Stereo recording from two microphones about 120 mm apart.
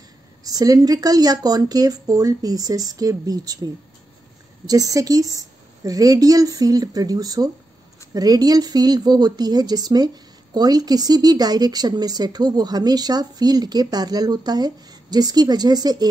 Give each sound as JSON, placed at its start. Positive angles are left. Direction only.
{"t": 0.4, "sound": "a woman's voice", "side_deg": -30}